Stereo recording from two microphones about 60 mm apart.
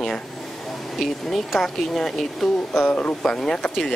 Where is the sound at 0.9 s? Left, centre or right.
Centre.